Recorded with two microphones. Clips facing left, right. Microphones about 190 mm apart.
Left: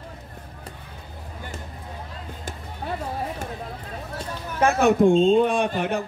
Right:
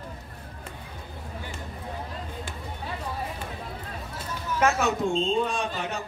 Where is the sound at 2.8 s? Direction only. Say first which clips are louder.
Left 7 dB; 55° left (ahead or behind).